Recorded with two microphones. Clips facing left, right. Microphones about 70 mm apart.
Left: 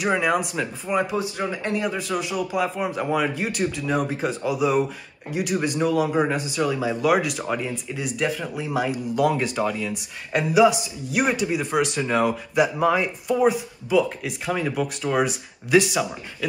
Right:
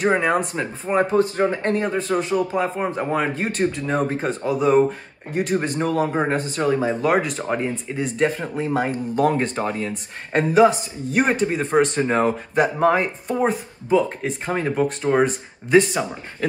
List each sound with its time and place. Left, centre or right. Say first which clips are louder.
0.0 s a man's voice: right 3 dB; right